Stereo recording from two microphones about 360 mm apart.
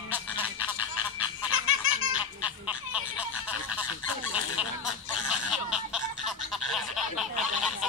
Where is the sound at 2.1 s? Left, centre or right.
Centre.